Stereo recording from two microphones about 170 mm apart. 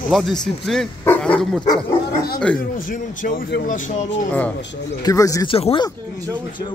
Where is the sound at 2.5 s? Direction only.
55° left (ahead or behind).